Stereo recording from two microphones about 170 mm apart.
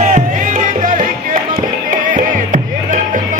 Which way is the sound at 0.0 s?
40° right (ahead or behind).